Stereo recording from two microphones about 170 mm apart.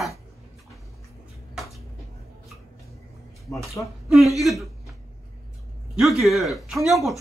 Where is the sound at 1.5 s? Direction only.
Centre (ahead or behind).